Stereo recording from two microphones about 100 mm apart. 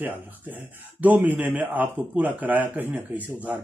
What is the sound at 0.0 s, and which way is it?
A man's voice, 20° right (ahead or behind).